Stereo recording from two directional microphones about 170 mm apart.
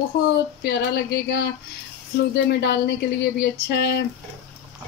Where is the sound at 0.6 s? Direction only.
75° left (ahead or behind).